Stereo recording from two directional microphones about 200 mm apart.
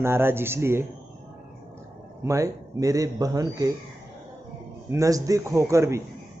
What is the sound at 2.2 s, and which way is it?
Speech, 15° right (ahead or behind).